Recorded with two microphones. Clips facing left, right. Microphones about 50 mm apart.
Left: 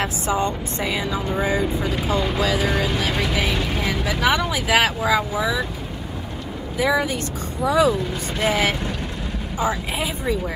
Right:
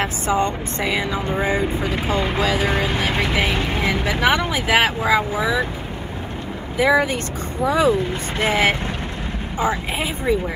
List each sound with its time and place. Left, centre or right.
0.0 s speech: right
6.8 s speech: right